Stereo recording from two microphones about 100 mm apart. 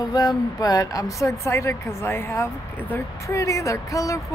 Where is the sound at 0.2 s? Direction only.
45° left (ahead or behind).